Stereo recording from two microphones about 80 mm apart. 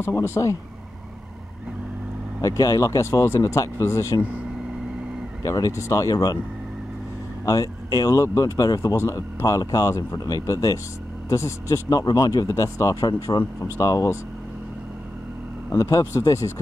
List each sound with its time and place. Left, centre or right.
0.0 s speech: left
2.4 s speech: left
5.4 s speech: left
7.4 s speech: left
8.9 s speech: left
15.7 s speech: left